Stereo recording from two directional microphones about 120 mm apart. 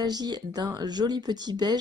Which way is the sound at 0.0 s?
35° right (ahead or behind).